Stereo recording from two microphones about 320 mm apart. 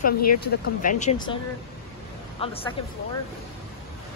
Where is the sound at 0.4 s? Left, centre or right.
Left.